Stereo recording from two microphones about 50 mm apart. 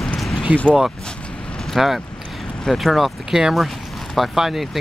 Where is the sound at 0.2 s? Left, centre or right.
Centre.